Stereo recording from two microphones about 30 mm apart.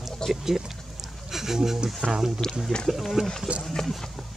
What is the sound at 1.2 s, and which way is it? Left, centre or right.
Speech, centre.